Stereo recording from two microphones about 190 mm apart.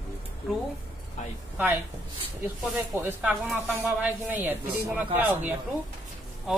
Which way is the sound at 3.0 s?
10° right (ahead or behind).